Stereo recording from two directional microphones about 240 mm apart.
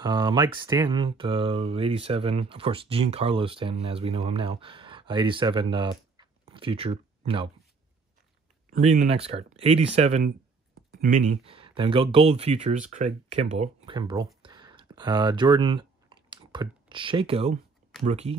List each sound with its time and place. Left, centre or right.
0.0 s speech: centre
8.6 s speech: right